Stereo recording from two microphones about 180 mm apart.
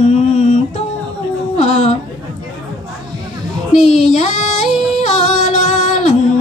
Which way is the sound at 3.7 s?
40° left (ahead or behind).